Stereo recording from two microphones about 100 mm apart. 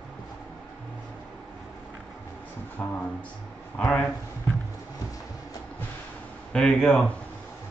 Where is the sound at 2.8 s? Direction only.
15° left (ahead or behind).